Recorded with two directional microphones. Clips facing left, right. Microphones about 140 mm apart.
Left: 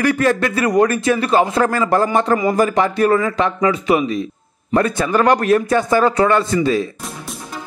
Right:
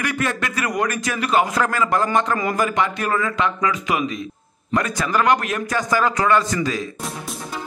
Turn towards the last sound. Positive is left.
turn(degrees=30)  # may be behind; listen again after turning